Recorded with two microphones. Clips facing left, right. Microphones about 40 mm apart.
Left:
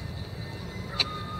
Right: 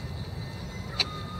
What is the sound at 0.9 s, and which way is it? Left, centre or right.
Vehicle, centre.